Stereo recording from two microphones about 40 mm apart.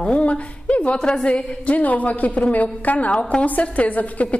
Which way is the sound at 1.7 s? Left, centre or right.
Left.